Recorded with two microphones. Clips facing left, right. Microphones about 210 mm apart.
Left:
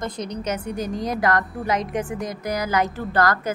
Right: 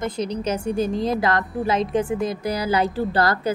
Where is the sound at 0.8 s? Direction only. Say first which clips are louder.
Right 4 dB; 15° left (ahead or behind).